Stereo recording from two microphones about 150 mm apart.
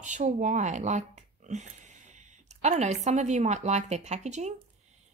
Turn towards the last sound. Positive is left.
turn(degrees=-50)  # may be behind; listen again after turning